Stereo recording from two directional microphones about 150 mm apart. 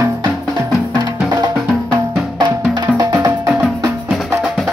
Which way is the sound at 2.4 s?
30° right (ahead or behind).